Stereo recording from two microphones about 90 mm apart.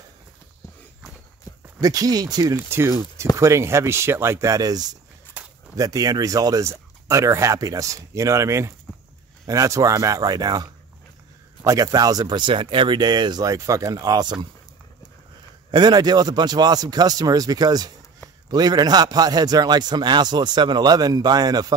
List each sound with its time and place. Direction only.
1.5 s a sound: 35° left (ahead or behind)
1.8 s a man's voice: 45° right (ahead or behind)
2.7 s speech: 30° right (ahead or behind); by 4.9 s 45° right (ahead or behind)
5.4 s a sound: 15° right (ahead or behind)
5.8 s a man's voice: 40° right (ahead or behind)
15.7 s a man's voice: 55° right (ahead or behind)